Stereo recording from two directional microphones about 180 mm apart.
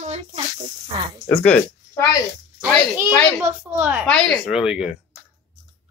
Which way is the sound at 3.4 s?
10° right (ahead or behind).